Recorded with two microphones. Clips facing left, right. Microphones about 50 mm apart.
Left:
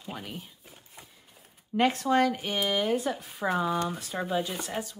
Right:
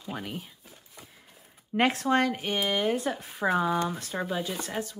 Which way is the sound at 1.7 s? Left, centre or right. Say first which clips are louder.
Even; right.